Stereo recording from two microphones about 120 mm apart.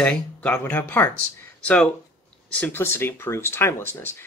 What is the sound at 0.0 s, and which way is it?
Speech, 10° left (ahead or behind).